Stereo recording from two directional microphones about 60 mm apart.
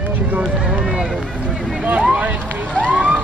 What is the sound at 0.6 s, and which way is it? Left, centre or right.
Run, centre.